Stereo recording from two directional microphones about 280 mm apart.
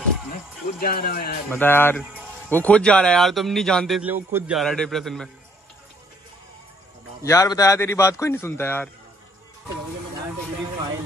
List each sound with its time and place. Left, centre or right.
0.3 s a sound: left
1.5 s speech: centre
7.2 s speech: centre